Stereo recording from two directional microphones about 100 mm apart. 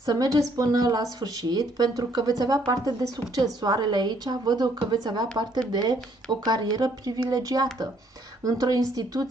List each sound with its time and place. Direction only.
0.0 s a woman's voice: 40° right (ahead or behind)